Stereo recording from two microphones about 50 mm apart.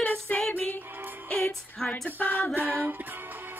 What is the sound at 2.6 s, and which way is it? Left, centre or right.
Music, right.